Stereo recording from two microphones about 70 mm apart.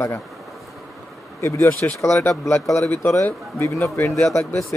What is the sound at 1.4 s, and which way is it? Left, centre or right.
Speech, left.